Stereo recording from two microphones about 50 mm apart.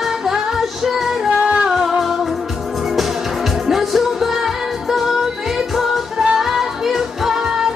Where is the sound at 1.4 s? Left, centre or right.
Right.